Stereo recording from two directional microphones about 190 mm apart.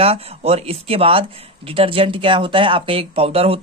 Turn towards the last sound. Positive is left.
turn(degrees=-30)  # may be behind; listen again after turning